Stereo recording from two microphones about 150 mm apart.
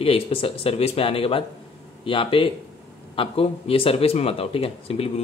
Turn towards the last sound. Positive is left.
turn(degrees=40)  # may be behind; listen again after turning